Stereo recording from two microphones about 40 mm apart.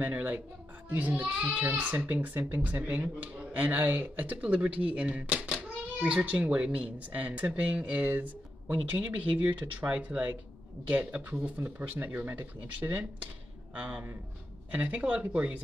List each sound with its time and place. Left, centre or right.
0.1 s a child's voice: right
13.7 s speech: right